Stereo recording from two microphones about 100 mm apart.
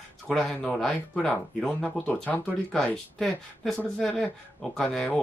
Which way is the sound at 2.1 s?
20° left (ahead or behind).